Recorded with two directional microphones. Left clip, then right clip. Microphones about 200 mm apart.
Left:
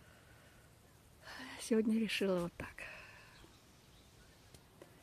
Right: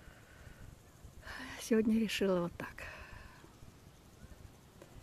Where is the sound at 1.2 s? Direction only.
10° left (ahead or behind).